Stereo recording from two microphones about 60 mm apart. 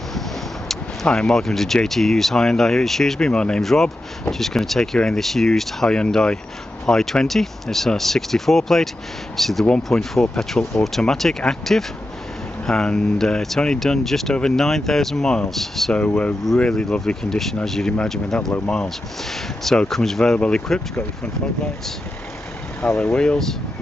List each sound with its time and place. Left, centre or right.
1.0 s speech: centre
3.3 s speech: centre
15.9 s speech: left; by 18.5 s centre
19.6 s speech: centre
22.8 s speech: centre